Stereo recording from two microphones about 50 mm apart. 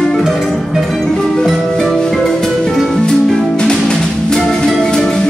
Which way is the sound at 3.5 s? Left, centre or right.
Centre.